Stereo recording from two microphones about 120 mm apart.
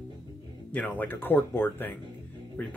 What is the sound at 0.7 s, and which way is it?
Speech, 15° left (ahead or behind).